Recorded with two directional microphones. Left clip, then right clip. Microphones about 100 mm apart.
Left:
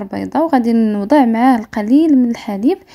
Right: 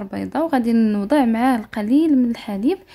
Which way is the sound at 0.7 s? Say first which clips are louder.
Left 3 dB; 15° left (ahead or behind).